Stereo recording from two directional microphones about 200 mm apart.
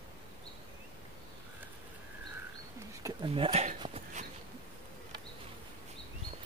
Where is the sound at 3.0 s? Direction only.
20° right (ahead or behind).